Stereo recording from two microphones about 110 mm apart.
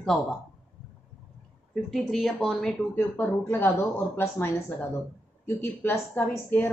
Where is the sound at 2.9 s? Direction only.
20° left (ahead or behind).